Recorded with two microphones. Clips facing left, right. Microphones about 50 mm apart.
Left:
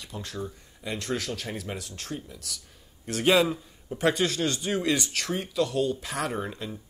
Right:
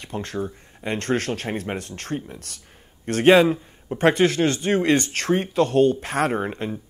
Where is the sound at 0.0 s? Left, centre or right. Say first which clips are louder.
Right 7 dB; right.